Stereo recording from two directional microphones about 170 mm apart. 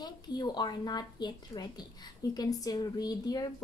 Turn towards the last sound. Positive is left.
turn(degrees=20)  # may be behind; listen again after turning